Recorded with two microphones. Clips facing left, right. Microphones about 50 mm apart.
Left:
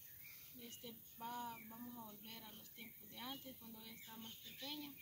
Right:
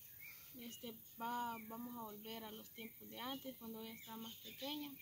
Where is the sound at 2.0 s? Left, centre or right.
Right.